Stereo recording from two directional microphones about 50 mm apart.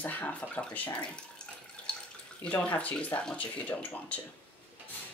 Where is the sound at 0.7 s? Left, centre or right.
Left.